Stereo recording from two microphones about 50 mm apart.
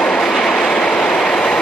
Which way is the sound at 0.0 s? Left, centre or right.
Centre.